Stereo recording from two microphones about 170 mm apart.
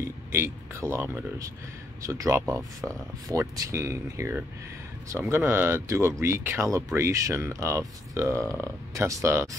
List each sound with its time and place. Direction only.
0.3 s speech: 15° right (ahead or behind)